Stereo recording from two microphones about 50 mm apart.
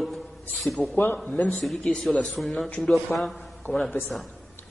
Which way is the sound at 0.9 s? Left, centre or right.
Left.